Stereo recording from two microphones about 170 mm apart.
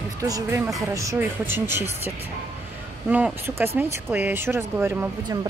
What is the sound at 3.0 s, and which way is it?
Speech, 10° right (ahead or behind).